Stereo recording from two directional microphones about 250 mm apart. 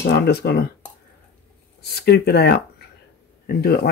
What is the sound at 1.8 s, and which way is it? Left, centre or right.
Speech, left.